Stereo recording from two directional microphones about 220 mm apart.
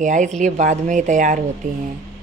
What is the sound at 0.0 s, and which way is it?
Speech, 35° right (ahead or behind).